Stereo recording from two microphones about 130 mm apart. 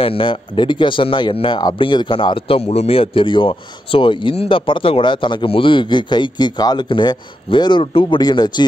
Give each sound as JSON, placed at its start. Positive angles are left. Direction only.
{"t": 0.0, "sound": "a man's voice", "side_deg": 40}